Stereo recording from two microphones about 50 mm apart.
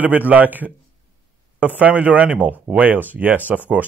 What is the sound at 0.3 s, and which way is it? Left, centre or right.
Speech, right.